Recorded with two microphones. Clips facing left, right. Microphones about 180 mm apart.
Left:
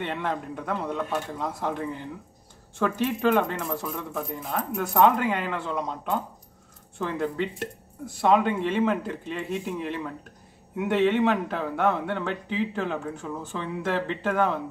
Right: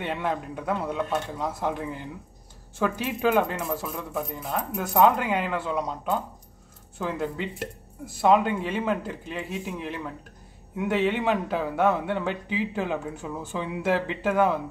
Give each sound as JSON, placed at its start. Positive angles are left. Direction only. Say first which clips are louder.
{"t": 0.0, "sound": "speech", "louder": "right 1 dB", "side_deg": -5}